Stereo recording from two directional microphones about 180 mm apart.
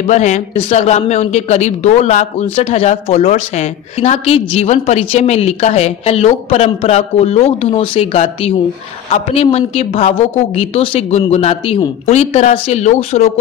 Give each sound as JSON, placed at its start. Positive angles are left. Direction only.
{"t": 0.0, "sound": "a woman's voice", "side_deg": 40}